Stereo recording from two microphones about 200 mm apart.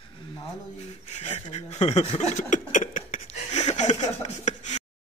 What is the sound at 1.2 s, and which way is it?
Chuckle, 30° left (ahead or behind).